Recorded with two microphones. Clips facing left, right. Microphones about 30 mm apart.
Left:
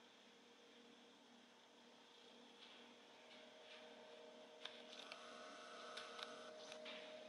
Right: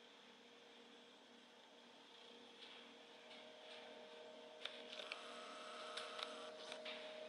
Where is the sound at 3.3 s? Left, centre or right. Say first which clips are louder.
Right 4 dB; right.